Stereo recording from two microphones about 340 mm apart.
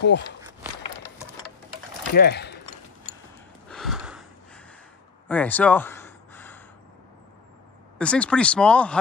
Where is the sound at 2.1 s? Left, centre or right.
Left.